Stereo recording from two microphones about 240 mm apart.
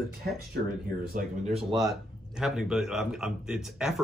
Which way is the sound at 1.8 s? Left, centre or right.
Centre.